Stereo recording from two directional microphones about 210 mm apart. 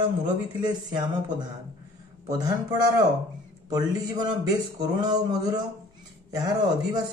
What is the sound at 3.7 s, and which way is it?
A man's voice, 20° right (ahead or behind).